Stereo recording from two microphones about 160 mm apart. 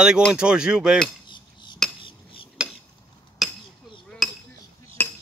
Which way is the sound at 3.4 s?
Centre (ahead or behind).